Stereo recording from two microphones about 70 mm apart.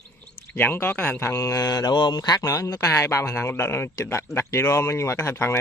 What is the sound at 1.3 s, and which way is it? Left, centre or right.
Speech, left.